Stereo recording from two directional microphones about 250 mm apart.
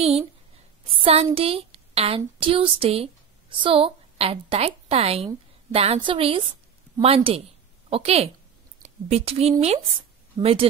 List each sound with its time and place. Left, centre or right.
0.8 s a woman's voice: right